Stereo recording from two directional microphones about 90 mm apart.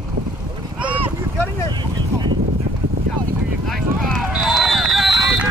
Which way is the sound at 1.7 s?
60° right (ahead or behind).